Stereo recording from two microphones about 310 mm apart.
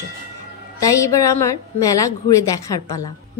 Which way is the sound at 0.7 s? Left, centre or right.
Centre.